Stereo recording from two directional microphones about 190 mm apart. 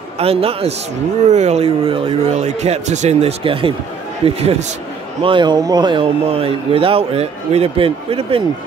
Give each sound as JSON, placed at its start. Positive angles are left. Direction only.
{"t": 0.2, "sound": "a man's voice", "side_deg": -30}